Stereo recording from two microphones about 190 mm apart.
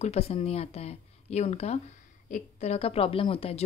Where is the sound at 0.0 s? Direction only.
35° left (ahead or behind).